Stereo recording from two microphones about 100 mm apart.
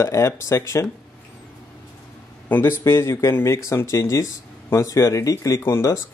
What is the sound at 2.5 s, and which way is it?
Speech, 25° left (ahead or behind).